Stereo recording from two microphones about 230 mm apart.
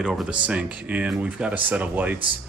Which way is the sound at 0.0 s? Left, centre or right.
Centre.